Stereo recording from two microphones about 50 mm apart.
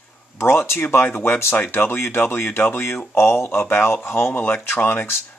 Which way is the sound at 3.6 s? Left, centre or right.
Left.